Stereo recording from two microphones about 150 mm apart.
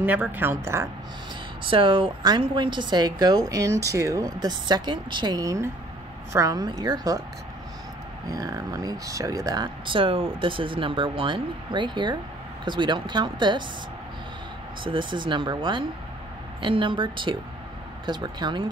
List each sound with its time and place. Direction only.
0.0 s speech: 10° right (ahead or behind)
1.6 s a woman's voice: 35° right (ahead or behind)
8.3 s a woman's voice: 25° right (ahead or behind)
9.8 s speech: 35° right (ahead or behind)
14.8 s a woman's voice: 35° right (ahead or behind)